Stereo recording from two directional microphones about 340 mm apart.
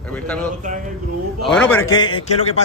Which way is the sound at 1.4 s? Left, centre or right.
Centre.